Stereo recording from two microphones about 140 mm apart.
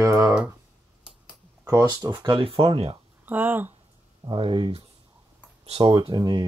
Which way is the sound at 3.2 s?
10° right (ahead or behind).